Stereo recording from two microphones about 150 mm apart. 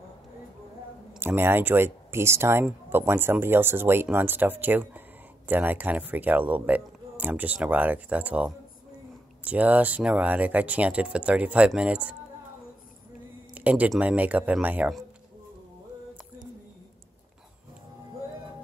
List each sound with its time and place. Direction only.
1.2 s speech: 15° right (ahead or behind)
13.6 s speech: 10° right (ahead or behind)